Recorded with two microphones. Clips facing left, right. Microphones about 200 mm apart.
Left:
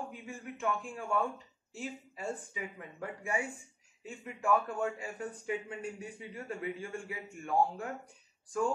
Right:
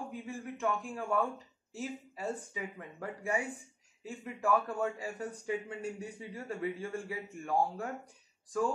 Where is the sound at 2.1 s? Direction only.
35° right (ahead or behind).